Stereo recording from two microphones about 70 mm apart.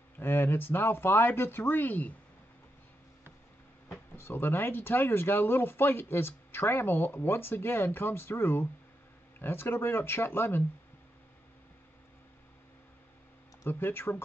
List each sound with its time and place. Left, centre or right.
0.2 s speech: left
4.2 s speech: left
13.7 s speech: left